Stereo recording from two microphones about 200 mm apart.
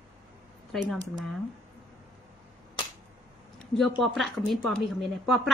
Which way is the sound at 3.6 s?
Centre (ahead or behind).